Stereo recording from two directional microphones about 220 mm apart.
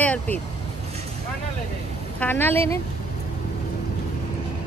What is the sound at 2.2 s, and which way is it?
Speech, 10° left (ahead or behind).